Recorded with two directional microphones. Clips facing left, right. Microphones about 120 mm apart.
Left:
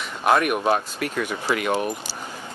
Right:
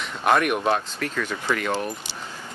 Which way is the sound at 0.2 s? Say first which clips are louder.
Left 1 dB; 5° left (ahead or behind).